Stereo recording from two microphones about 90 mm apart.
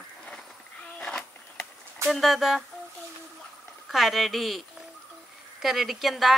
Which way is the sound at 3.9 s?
Centre (ahead or behind).